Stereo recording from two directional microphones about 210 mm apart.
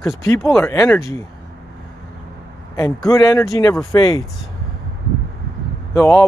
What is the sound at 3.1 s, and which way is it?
Speech, 15° left (ahead or behind).